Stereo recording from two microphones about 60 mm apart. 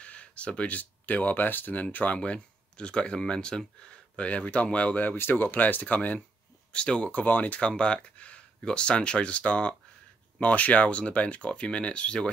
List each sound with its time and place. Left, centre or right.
0.0 s speech: left
5.1 s speech: left; by 12.3 s centre